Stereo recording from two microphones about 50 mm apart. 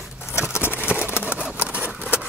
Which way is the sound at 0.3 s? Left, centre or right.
Left.